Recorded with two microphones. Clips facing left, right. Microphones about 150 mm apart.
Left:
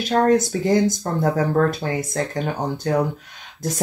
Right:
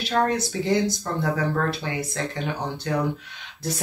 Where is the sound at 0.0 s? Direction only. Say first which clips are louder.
Left 6 dB; 45° left (ahead or behind).